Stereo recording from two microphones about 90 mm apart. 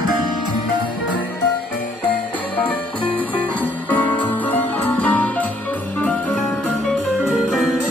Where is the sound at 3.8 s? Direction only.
15° left (ahead or behind).